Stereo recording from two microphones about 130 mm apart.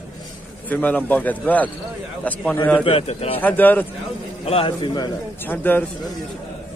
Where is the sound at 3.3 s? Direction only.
15° left (ahead or behind).